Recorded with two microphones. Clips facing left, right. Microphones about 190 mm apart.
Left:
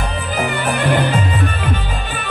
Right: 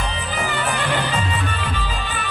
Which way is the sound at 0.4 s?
55° left (ahead or behind).